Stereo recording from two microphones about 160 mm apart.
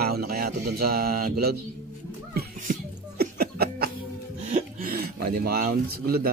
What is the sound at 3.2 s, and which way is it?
Laughter, 75° right (ahead or behind).